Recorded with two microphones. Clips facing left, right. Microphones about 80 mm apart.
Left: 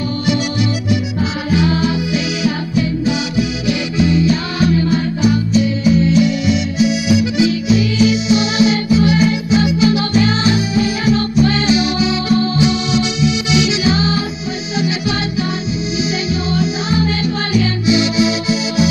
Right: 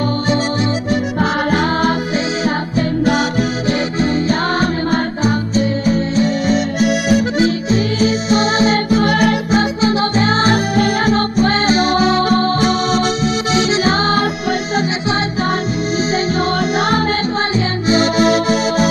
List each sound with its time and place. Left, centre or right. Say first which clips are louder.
1.5 s music: right 1 dB; right
17.6 s music: left 2 dB; right